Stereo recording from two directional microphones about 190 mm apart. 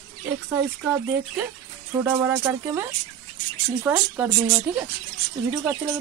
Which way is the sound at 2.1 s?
15° right (ahead or behind).